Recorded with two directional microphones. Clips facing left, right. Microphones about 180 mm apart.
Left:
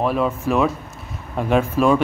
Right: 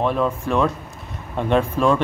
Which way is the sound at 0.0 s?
5° left (ahead or behind).